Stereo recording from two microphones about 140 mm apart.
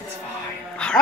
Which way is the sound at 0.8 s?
5° left (ahead or behind).